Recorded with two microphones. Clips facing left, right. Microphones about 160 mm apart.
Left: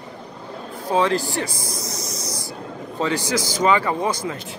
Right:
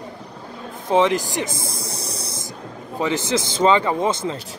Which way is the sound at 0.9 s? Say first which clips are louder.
Right 2 dB; 20° right (ahead or behind).